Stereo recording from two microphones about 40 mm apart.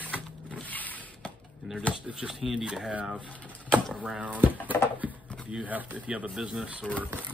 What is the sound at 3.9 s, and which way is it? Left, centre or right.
Speech, right.